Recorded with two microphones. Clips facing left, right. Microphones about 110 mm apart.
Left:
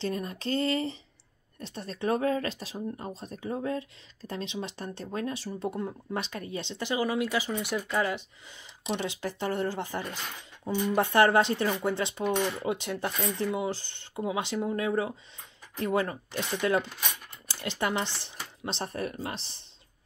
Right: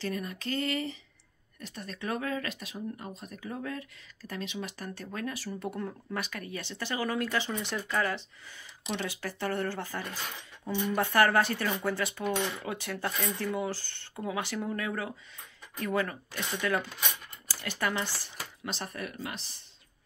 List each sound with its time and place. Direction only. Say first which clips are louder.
0.0 s speech: left 3 dB; 30° left (ahead or behind)